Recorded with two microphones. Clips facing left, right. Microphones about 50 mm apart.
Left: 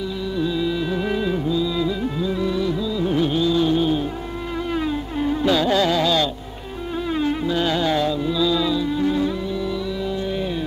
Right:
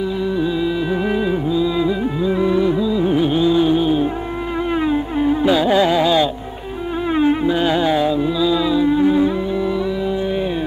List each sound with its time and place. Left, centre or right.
0.4 s music: centre